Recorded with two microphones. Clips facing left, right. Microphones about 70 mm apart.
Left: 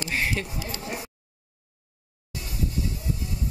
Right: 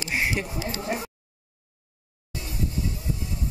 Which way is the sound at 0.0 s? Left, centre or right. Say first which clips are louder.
Right 1 dB; centre.